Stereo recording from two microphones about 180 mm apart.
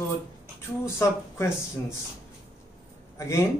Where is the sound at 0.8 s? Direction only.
15° left (ahead or behind).